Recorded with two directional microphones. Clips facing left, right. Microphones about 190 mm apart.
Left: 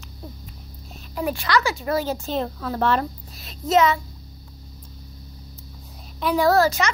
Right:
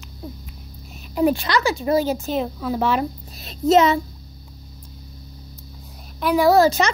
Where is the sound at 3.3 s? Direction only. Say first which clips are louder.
Right 4 dB; 25° right (ahead or behind).